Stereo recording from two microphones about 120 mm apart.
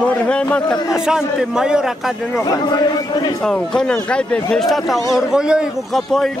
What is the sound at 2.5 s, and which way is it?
Speech, 35° left (ahead or behind).